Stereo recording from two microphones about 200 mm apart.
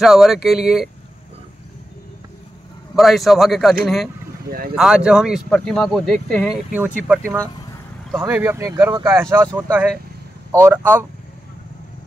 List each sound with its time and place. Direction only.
0.0 s speech: centre (ahead or behind)
3.0 s speech: centre (ahead or behind)
4.5 s speech: 50° right (ahead or behind)
4.7 s speech: 5° right (ahead or behind)
10.5 s speech: 10° right (ahead or behind)